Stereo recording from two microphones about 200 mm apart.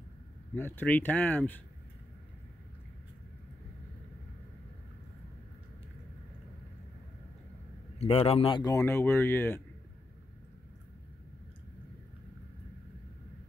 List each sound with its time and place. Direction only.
0.6 s speech: 10° left (ahead or behind)
8.0 s speech: 30° left (ahead or behind); by 9.6 s 10° left (ahead or behind)